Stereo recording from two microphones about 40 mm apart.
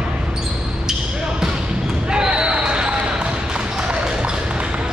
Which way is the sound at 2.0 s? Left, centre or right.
Right.